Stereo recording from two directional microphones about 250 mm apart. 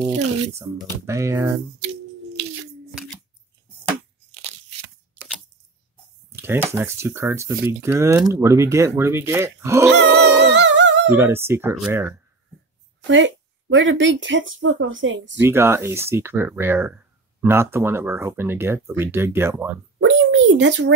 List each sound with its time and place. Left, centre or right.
1.0 s speech: centre
2.9 s shuffling cards: centre
6.3 s speech: centre
10.4 s humming: right
11.1 s speech: centre
13.0 s speech: right
15.3 s speech: centre
20.0 s speech: right